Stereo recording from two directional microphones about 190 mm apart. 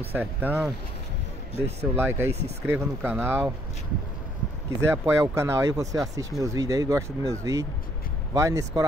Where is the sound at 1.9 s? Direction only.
10° right (ahead or behind).